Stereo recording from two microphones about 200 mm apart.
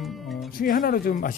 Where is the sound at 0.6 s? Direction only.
45° left (ahead or behind).